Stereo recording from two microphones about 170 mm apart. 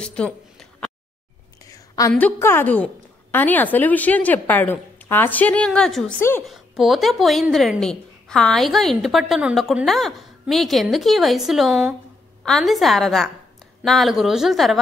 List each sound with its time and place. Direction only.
0.0 s a sound: 5° left (ahead or behind)
1.7 s whispering: 20° left (ahead or behind)
2.1 s a woman's voice: 10° left (ahead or behind)